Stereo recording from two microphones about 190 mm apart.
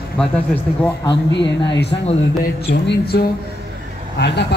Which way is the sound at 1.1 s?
65° left (ahead or behind).